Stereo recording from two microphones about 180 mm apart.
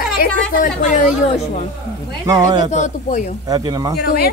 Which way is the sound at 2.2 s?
20° right (ahead or behind).